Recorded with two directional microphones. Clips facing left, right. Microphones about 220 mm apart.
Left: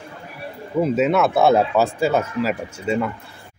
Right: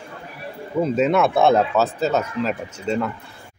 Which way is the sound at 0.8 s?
5° left (ahead or behind).